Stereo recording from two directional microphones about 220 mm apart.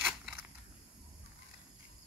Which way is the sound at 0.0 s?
Centre (ahead or behind).